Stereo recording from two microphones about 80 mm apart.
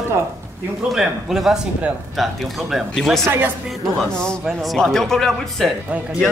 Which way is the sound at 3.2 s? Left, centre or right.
Right.